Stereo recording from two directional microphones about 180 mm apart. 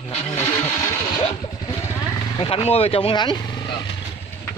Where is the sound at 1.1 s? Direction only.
25° left (ahead or behind).